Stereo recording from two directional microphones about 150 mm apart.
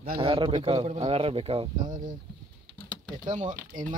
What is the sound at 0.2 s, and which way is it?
Speech, 35° right (ahead or behind).